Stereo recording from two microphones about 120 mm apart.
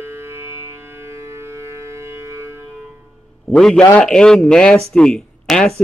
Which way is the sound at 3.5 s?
5° left (ahead or behind).